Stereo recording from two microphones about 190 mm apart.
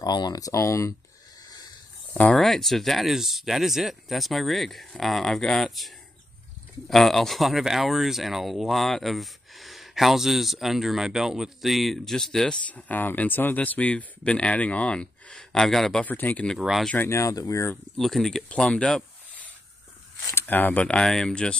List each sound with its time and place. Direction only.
0.0 s speech: 20° left (ahead or behind)
2.1 s speech: 5° left (ahead or behind)
17.9 s speech: centre (ahead or behind)